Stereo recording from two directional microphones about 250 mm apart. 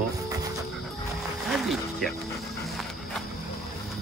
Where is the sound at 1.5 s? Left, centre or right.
Centre.